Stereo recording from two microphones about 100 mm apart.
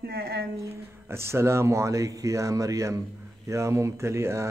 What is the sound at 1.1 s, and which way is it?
Speech, 25° right (ahead or behind).